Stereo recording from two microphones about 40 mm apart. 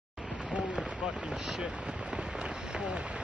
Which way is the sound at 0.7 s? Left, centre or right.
Centre.